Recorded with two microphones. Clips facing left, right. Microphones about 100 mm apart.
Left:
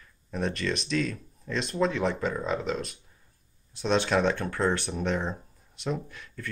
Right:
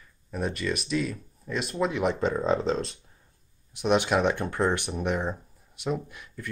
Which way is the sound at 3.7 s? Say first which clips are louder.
Right 2 dB; 15° right (ahead or behind).